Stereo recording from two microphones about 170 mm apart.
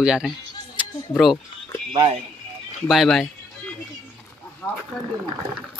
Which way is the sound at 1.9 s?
30° right (ahead or behind).